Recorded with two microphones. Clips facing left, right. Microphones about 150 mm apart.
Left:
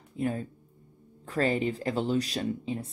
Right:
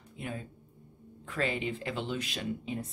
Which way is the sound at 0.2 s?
40° left (ahead or behind).